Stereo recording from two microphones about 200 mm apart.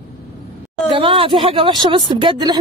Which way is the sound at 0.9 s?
25° right (ahead or behind).